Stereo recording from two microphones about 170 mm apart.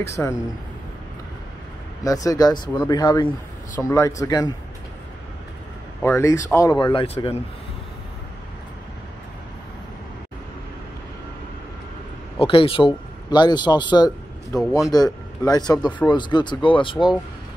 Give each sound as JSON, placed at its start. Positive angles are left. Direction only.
{"t": 0.0, "sound": "a man's voice", "side_deg": 15}
{"t": 2.0, "sound": "speech", "side_deg": 20}
{"t": 6.0, "sound": "a man's voice", "side_deg": 15}
{"t": 12.4, "sound": "a man's voice", "side_deg": 30}